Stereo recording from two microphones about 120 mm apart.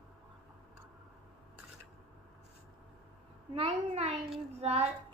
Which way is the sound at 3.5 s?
50° right (ahead or behind).